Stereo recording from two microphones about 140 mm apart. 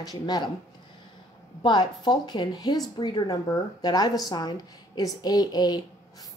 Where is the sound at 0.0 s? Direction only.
30° left (ahead or behind).